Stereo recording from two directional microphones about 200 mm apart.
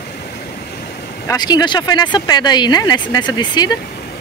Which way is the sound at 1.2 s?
20° left (ahead or behind).